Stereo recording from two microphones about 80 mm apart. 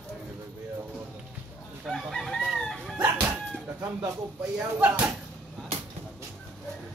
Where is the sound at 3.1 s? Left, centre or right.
Right.